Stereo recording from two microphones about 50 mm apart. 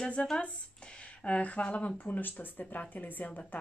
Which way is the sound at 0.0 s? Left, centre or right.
Left.